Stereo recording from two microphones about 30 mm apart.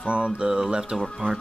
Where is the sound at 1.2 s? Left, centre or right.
Right.